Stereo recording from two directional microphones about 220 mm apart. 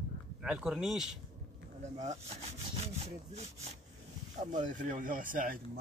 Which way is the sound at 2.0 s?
30° right (ahead or behind).